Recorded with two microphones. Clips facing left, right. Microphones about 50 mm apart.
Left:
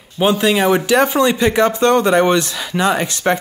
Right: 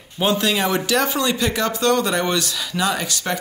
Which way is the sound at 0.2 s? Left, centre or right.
Left.